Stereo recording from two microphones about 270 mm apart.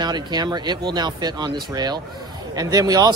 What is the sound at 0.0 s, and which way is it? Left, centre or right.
A man's voice, centre.